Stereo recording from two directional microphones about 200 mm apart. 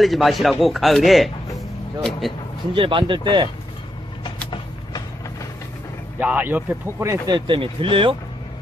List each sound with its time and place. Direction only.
0.0 s a man's voice: centre (ahead or behind)
2.7 s speech: 25° right (ahead or behind)
4.2 s vehicle: 25° left (ahead or behind)
6.1 s speech: 10° right (ahead or behind); by 8.2 s 25° right (ahead or behind)